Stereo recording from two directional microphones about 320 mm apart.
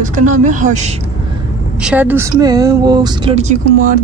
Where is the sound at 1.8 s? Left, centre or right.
Centre.